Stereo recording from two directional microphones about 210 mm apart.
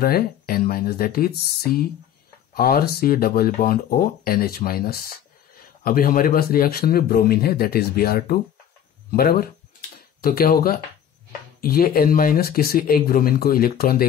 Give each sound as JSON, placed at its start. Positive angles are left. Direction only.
{"t": 0.0, "sound": "a man's voice", "side_deg": 45}
{"t": 9.1, "sound": "a sound", "side_deg": 45}
{"t": 11.6, "sound": "a man's voice", "side_deg": 45}